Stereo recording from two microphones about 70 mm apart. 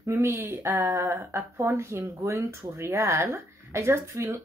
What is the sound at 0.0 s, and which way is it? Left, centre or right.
Speech, right.